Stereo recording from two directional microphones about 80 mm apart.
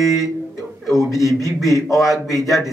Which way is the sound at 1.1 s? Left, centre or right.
Left.